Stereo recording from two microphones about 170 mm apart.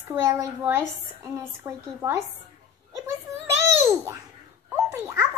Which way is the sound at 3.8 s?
15° right (ahead or behind).